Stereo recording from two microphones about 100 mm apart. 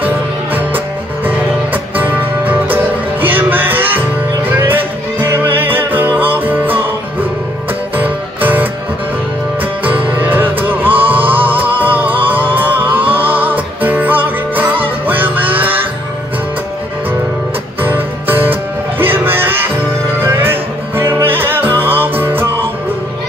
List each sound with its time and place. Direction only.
0.6 s music: 20° right (ahead or behind)
7.9 s music: 20° right (ahead or behind)
10.1 s music: 20° right (ahead or behind)
17.8 s music: 20° right (ahead or behind)